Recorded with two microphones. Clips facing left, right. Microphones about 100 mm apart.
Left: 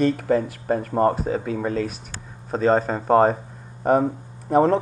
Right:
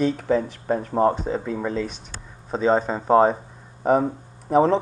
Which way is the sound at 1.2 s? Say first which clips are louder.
Left 1 dB; 55° left (ahead or behind).